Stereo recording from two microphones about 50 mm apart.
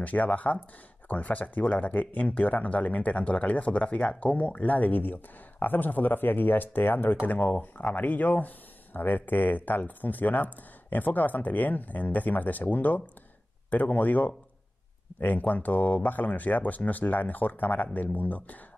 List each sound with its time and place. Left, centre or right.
0.0 s speech: left
7.2 s speech: left